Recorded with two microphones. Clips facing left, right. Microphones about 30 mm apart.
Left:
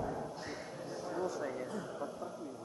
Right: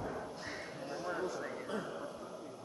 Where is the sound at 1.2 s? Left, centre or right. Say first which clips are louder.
Left 2 dB; centre.